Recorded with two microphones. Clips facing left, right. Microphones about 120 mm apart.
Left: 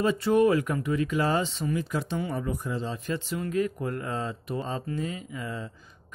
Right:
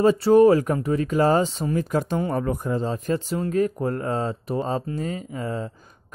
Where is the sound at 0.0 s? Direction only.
35° right (ahead or behind).